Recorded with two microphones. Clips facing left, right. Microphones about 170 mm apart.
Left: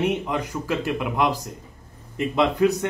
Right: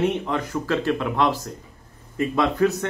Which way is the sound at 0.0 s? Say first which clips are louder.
Right 1 dB; 15° left (ahead or behind).